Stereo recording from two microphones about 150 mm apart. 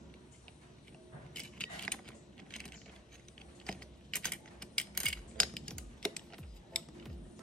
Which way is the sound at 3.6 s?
5° left (ahead or behind).